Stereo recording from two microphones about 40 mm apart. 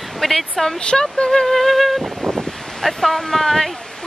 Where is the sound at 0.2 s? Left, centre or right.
Centre.